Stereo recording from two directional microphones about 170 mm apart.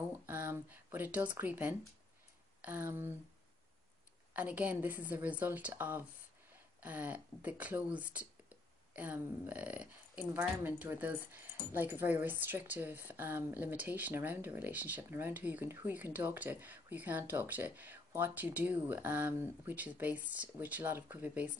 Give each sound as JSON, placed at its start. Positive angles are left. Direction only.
{"t": 0.1, "sound": "speech", "side_deg": -10}
{"t": 4.3, "sound": "speech", "side_deg": -10}